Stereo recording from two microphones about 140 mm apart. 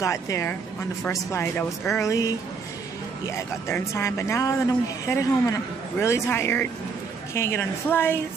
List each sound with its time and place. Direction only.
0.0 s a woman's voice: 20° left (ahead or behind)